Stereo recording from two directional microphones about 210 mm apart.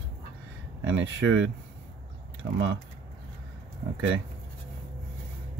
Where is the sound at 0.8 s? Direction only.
65° right (ahead or behind).